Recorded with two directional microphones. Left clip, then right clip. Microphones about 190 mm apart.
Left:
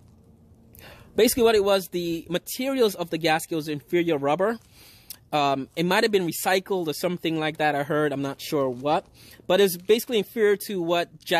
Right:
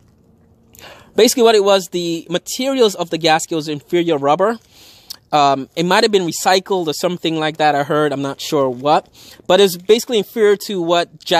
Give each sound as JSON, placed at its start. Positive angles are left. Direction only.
{"t": 0.7, "sound": "speech", "side_deg": -30}